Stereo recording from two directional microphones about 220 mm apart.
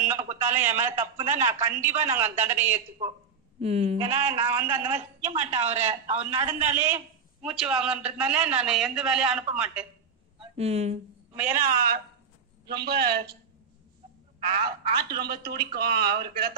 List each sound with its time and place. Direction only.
0.0 s a sound: 10° right (ahead or behind)
0.5 s a man's voice: 10° right (ahead or behind)
3.0 s a woman's voice: 25° right (ahead or behind)
4.4 s a man's voice: 10° right (ahead or behind)
4.9 s a woman's voice: 30° right (ahead or behind)
6.3 s a man's voice: 10° right (ahead or behind)
10.4 s speech: 30° right (ahead or behind)
11.3 s a man's voice: 5° right (ahead or behind)
12.6 s speech: 45° right (ahead or behind)
14.6 s speech: 45° right (ahead or behind)